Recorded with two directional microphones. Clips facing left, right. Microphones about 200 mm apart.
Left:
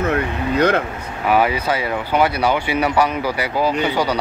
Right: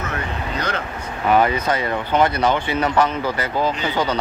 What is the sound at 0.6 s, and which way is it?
Speech, 55° left (ahead or behind).